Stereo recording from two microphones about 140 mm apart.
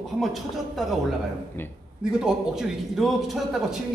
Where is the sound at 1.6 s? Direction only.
15° left (ahead or behind).